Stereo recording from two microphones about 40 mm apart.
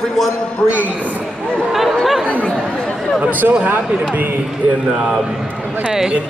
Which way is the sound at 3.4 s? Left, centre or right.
Right.